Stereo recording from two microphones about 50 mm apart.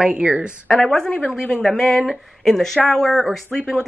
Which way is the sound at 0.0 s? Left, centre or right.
Centre.